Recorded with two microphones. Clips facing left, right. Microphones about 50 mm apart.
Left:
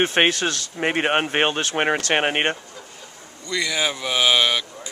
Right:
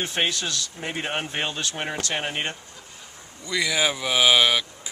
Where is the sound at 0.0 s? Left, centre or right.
Left.